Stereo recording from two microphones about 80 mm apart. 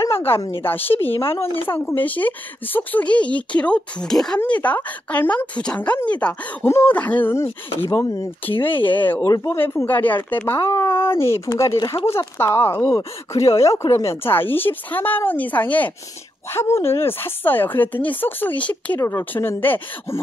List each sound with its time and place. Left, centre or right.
0.0 s a sound: left
0.6 s speech: left; by 4.4 s centre
4.5 s speech: centre
6.6 s speech: left
6.9 s speech: centre
7.3 s speech: left
8.6 s speech: left
9.4 s speech: left
9.8 s speech: left
12.8 s speech: left
14.2 s speech: left
16.5 s speech: left; by 18.9 s centre
18.9 s speech: left
19.3 s speech: left